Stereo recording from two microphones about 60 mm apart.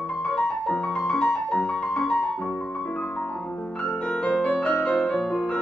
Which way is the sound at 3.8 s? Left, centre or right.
Centre.